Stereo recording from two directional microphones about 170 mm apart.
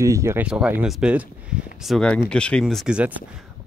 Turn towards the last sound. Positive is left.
turn(degrees=-5)  # may be behind; listen again after turning